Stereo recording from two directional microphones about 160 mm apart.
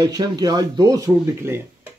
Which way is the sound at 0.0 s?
25° right (ahead or behind).